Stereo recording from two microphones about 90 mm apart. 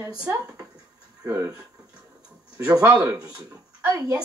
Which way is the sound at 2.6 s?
40° right (ahead or behind).